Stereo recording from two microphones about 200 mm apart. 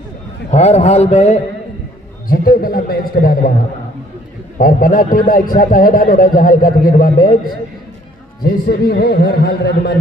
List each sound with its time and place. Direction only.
0.5 s a man's voice: 35° left (ahead or behind)
2.2 s a man's voice: 45° left (ahead or behind)
4.6 s a man's voice: 45° left (ahead or behind)
8.6 s a man's voice: 55° left (ahead or behind)